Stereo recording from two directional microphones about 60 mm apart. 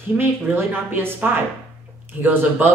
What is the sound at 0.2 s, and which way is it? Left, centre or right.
Speech, right.